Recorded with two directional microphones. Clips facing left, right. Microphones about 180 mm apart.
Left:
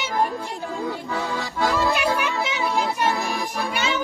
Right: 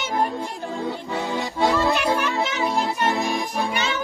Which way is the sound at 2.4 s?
20° right (ahead or behind).